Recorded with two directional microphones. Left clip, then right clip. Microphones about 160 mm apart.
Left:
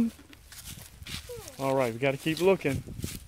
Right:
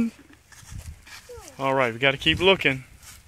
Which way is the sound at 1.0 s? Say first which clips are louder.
Left 2 dB; 25° left (ahead or behind).